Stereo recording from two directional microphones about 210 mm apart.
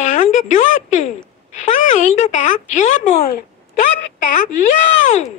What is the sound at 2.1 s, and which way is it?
Speech, 35° left (ahead or behind).